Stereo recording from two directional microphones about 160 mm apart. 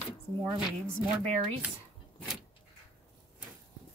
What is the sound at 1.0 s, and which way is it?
Speech, centre (ahead or behind).